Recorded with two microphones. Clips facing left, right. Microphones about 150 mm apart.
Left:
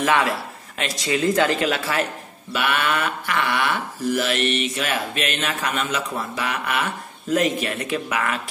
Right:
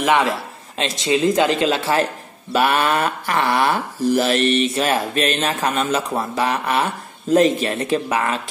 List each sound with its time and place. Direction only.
0.0 s a man's voice: 20° right (ahead or behind)